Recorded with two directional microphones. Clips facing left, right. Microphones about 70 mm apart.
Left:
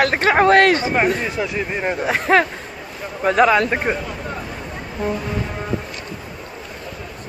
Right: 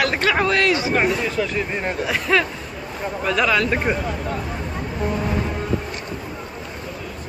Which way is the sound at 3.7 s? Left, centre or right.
Left.